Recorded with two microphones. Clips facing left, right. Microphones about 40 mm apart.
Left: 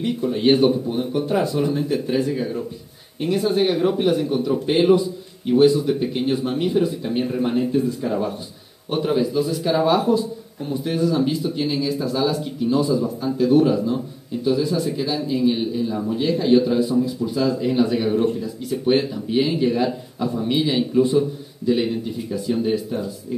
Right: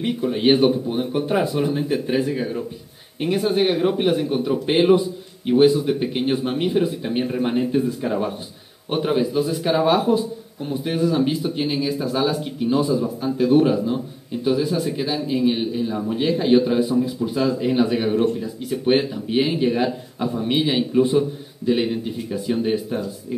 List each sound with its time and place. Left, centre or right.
0.0 s a man's voice: right